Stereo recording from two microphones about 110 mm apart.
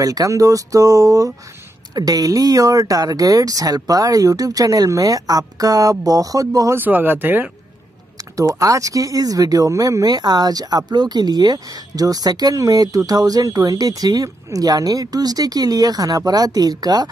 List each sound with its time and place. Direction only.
0.0 s speech: 30° right (ahead or behind)
6.8 s speech: 20° right (ahead or behind)
8.4 s speech: 30° right (ahead or behind)